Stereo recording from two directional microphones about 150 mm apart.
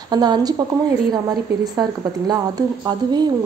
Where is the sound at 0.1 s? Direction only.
30° right (ahead or behind).